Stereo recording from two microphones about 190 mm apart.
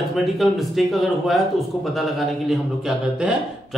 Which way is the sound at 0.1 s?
Centre (ahead or behind).